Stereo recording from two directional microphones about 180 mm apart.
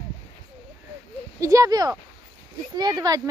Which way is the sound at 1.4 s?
20° right (ahead or behind).